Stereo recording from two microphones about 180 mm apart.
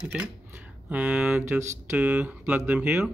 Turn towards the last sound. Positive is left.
turn(degrees=-5)  # may be behind; listen again after turning